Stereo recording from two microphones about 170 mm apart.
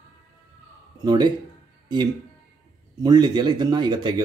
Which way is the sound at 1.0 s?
25° right (ahead or behind).